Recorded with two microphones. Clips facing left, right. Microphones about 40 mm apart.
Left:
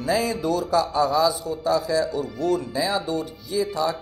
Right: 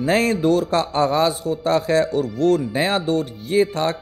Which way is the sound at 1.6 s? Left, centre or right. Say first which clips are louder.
Right 3 dB; right.